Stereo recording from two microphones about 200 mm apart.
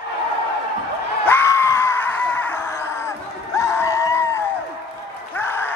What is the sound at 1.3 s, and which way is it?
Screaming, 10° left (ahead or behind).